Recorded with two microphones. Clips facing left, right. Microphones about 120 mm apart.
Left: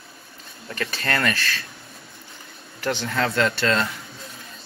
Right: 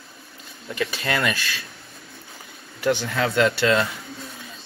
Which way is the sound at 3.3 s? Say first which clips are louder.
Right 5 dB; 20° right (ahead or behind).